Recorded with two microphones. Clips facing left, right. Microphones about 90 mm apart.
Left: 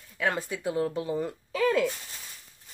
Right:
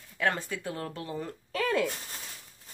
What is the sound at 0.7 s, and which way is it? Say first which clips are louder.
Speech: left 8 dB; 15° left (ahead or behind).